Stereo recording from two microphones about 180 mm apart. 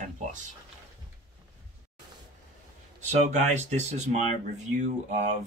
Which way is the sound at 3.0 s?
40° right (ahead or behind).